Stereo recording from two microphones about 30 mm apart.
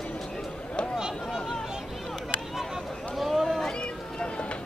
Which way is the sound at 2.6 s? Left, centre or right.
Centre.